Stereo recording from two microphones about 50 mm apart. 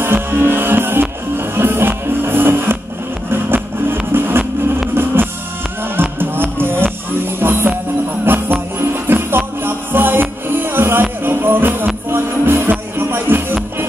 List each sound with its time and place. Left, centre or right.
0.0 s music: right
5.9 s music: right